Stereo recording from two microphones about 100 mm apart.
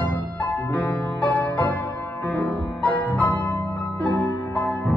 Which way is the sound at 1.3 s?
15° left (ahead or behind).